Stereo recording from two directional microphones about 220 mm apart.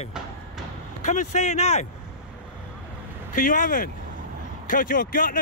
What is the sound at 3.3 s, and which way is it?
Speech, 35° left (ahead or behind).